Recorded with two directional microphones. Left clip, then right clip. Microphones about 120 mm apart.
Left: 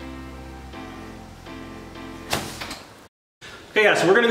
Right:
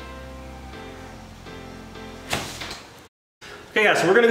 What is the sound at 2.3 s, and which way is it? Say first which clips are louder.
Music: left 1 dB; 10° left (ahead or behind).